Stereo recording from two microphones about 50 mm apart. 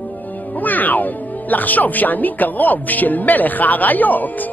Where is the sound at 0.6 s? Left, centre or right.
Left.